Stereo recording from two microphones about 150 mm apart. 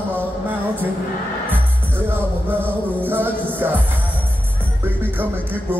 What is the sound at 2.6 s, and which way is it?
Music, 15° right (ahead or behind).